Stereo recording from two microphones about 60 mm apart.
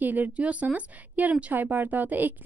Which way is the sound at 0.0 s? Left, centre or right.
Right.